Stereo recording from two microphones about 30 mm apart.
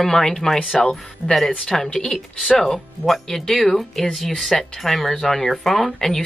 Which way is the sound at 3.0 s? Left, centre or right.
Centre.